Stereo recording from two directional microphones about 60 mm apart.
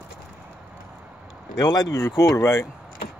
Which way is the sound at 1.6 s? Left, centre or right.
Left.